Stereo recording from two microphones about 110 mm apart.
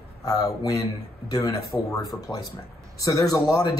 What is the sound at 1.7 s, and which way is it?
Speech, 20° left (ahead or behind).